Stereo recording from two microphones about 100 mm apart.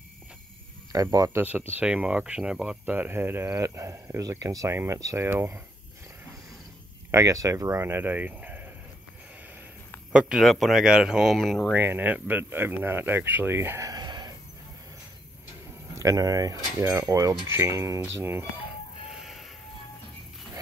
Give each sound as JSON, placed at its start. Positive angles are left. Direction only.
{"t": 0.9, "sound": "cutlery", "side_deg": -35}
{"t": 1.3, "sound": "speech", "side_deg": -15}
{"t": 2.8, "sound": "speech", "side_deg": -20}
{"t": 7.1, "sound": "speech", "side_deg": -30}
{"t": 10.1, "sound": "speech", "side_deg": -5}
{"t": 11.7, "sound": "speech", "side_deg": -20}
{"t": 15.9, "sound": "cutlery", "side_deg": -35}
{"t": 17.5, "sound": "speech", "side_deg": -30}
{"t": 19.0, "sound": "a sound", "side_deg": -5}